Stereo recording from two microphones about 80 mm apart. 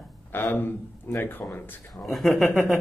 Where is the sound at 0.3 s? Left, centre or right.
Left.